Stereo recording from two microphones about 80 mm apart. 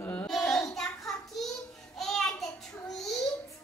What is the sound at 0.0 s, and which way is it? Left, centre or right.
Child singing, left.